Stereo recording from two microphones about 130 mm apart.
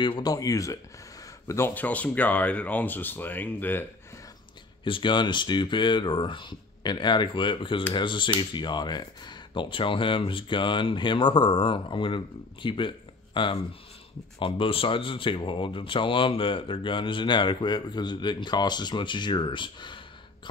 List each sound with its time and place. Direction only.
0.0 s speech: 35° left (ahead or behind)
1.5 s speech: 15° left (ahead or behind)
4.8 s speech: 40° left (ahead or behind)